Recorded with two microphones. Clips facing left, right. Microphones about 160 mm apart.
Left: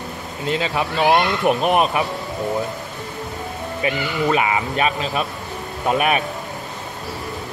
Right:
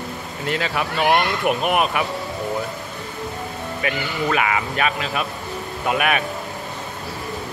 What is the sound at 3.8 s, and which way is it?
A man's voice, 25° left (ahead or behind).